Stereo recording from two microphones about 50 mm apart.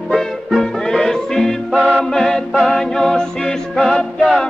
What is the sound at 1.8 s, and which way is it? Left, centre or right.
Music, left.